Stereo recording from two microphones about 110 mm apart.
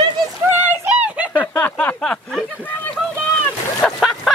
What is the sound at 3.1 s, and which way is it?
Boat, 10° left (ahead or behind).